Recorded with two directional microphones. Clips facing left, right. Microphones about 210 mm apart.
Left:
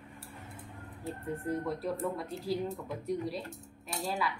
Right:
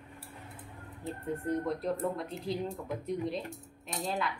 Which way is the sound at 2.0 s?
20° right (ahead or behind).